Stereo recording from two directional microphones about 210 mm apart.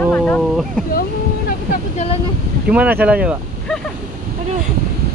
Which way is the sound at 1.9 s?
30° left (ahead or behind).